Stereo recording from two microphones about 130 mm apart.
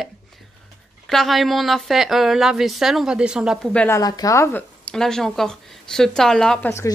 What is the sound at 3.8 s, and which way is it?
Speech, 25° left (ahead or behind).